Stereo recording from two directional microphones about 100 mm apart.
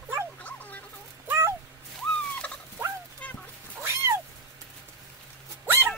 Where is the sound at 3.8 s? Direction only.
25° right (ahead or behind).